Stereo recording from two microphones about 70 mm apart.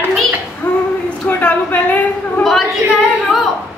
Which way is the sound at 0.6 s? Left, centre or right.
Left.